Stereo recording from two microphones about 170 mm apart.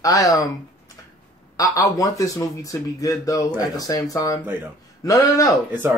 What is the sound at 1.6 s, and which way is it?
Speech, 20° left (ahead or behind).